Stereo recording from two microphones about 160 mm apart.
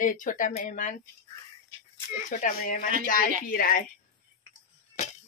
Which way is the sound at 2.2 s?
55° left (ahead or behind).